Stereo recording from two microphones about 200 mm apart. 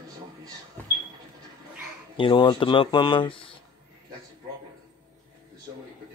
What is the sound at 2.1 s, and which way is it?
Speech, 25° left (ahead or behind).